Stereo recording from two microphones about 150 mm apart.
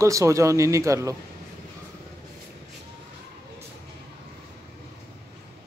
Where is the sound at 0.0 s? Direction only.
20° right (ahead or behind).